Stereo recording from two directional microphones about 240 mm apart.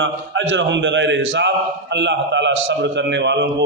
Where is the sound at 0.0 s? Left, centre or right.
Right.